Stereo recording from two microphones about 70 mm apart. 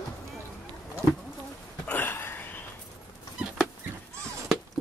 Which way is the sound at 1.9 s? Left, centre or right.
Left.